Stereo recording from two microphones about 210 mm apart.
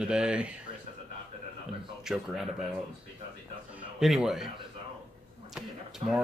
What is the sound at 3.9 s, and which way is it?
Speech, centre (ahead or behind).